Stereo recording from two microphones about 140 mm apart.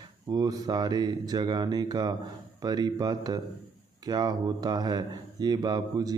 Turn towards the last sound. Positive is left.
turn(degrees=-30)  # may be behind; listen again after turning